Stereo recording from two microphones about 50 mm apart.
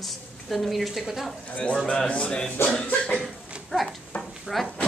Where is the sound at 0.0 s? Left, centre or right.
Centre.